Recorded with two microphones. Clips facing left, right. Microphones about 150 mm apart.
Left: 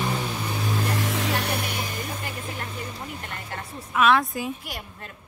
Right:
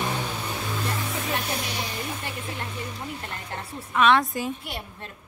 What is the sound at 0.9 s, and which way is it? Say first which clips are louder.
Music: left 3 dB; 90° left.